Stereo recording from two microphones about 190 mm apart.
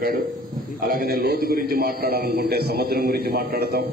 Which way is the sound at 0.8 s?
50° right (ahead or behind).